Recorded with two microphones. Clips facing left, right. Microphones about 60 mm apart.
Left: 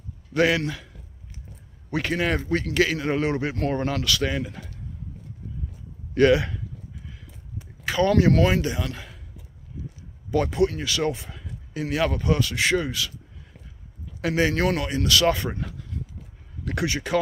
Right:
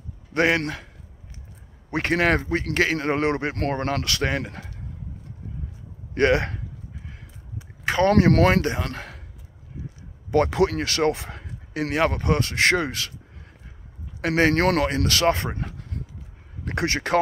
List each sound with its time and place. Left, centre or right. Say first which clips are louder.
0.3 s a man's voice: even; right
1.9 s speech: right 2 dB; right
2.1 s a man's voice: right 5 dB; right
2.6 s a man's voice: even; right
4.4 s a man's voice: even; right
6.1 s a man's voice: left 2 dB; right
7.8 s a man's voice: right 2 dB; right
10.5 s speech: right 1 dB; right
10.9 s speech: right 3 dB; right
12.6 s speech: right 3 dB; right
14.2 s a man's voice: right 3 dB; right
15.0 s a man's voice: even; right
16.8 s speech: right 2 dB; right